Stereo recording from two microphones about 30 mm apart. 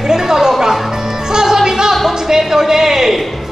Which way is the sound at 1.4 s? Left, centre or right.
Centre.